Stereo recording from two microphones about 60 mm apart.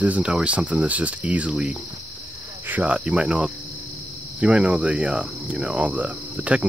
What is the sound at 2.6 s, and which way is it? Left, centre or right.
Cricket, right.